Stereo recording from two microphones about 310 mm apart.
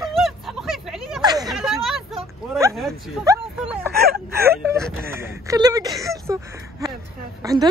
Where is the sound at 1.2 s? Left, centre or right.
Centre.